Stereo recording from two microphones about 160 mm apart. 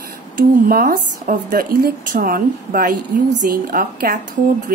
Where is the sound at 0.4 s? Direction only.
65° right (ahead or behind).